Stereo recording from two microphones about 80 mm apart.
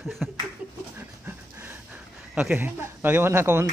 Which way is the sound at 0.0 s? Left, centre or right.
Centre.